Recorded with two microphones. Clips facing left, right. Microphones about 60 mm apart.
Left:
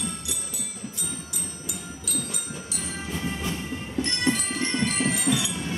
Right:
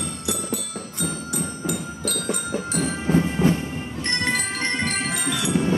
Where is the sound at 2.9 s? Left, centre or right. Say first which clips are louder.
Right 9 dB; right.